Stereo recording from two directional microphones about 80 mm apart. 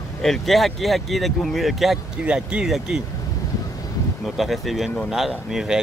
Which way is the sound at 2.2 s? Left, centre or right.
Centre.